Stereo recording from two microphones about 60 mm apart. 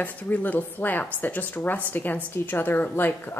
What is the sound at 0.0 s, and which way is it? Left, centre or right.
Speech, left.